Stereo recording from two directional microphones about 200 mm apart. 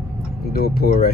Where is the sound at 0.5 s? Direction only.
50° left (ahead or behind).